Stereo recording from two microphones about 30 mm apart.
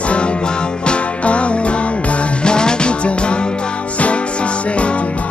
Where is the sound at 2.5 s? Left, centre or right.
Left.